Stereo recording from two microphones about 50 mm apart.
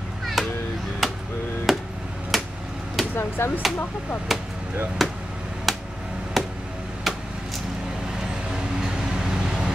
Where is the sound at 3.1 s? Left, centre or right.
Left.